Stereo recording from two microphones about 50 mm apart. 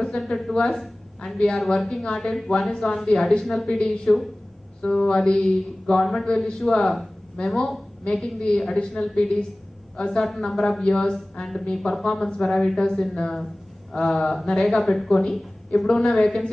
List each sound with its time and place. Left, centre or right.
0.0 s a woman's voice: centre
4.9 s a woman's voice: centre